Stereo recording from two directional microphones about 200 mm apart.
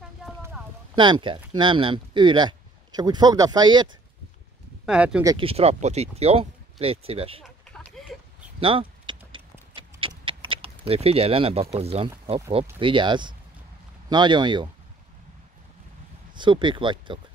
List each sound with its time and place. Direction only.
0.4 s clip-clop: 10° right (ahead or behind)
0.9 s speech: 25° right (ahead or behind)
4.8 s speech: 5° right (ahead or behind)
5.2 s speech: 20° right (ahead or behind)
5.5 s speech: 30° right (ahead or behind)
7.7 s a sound: centre (ahead or behind)
8.5 s a sound: 25° right (ahead or behind)
11.7 s speech: 30° right (ahead or behind)
16.3 s speech: 25° right (ahead or behind)